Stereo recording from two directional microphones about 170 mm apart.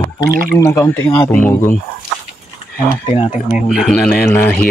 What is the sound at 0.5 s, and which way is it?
Speech, 15° left (ahead or behind).